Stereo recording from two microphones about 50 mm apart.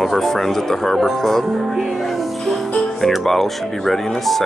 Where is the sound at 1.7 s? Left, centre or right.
Centre.